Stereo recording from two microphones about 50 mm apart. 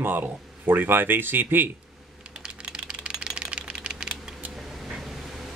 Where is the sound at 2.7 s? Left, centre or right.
Centre.